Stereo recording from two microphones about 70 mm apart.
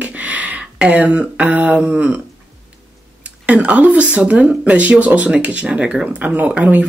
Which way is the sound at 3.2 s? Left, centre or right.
Right.